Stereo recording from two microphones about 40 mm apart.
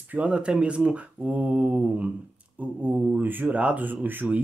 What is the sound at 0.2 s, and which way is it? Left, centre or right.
Speech, right.